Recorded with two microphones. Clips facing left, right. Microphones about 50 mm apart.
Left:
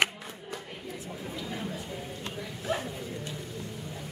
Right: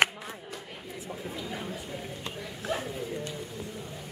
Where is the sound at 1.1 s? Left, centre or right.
Centre.